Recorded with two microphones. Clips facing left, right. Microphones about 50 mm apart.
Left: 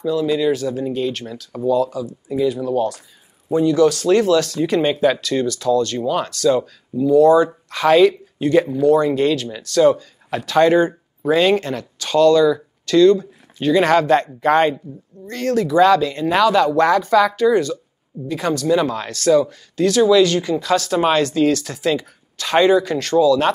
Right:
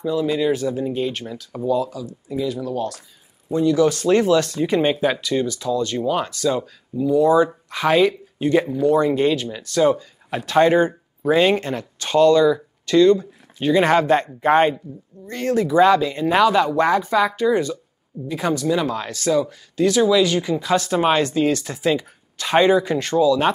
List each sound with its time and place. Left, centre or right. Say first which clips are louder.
0.0 s speech: left 2 dB; right
1.5 s speech: left 4 dB; centre
3.9 s speech: left 1 dB; right
4.6 s speech: left 1 dB; centre
8.8 s speech: left 1 dB; right
18.7 s speech: left 3 dB; centre
20.7 s speech: left 1 dB; right